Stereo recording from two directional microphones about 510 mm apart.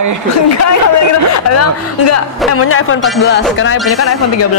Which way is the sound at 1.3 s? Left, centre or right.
Left.